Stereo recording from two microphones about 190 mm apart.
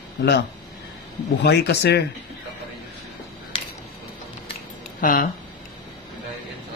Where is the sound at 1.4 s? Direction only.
60° left (ahead or behind).